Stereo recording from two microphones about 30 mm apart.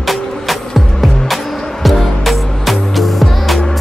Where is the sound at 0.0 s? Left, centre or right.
Centre.